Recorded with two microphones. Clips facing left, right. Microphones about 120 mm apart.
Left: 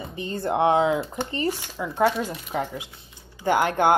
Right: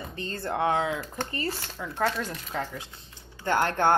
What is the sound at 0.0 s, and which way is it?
Speech, 15° left (ahead or behind).